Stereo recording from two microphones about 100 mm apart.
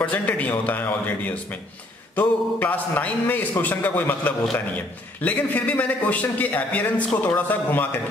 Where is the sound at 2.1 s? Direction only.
15° left (ahead or behind).